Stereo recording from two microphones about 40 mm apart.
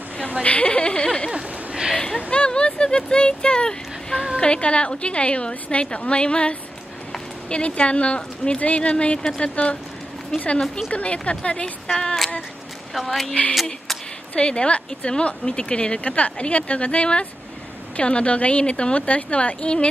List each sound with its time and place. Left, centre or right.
0.4 s speech: left
1.3 s a sound: right
2.3 s a sound: left
4.4 s speech: left
10.9 s speech: left
11.9 s female singing: centre
12.9 s a woman's voice: centre
13.3 s speech: left